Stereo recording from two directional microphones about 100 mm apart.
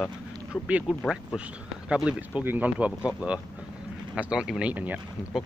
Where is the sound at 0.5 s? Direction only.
10° right (ahead or behind).